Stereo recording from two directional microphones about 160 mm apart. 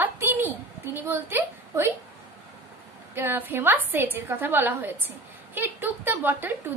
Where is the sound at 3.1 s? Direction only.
15° right (ahead or behind).